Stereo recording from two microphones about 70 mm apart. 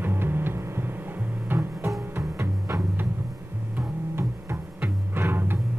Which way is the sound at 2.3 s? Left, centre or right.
Right.